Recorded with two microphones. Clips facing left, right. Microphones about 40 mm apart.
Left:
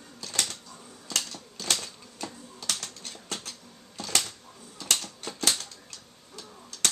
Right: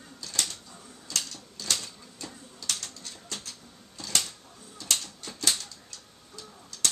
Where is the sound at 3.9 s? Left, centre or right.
Left.